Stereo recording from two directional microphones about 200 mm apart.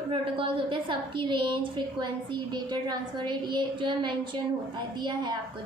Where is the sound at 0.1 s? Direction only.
25° right (ahead or behind).